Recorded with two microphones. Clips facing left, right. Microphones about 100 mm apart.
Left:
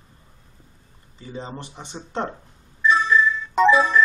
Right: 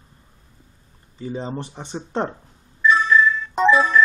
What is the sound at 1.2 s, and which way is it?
Speech, 35° right (ahead or behind).